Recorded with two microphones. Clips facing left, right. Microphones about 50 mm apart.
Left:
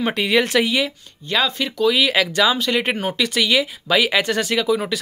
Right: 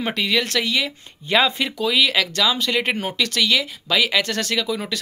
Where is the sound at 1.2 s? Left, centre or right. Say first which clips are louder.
Right 2 dB; centre.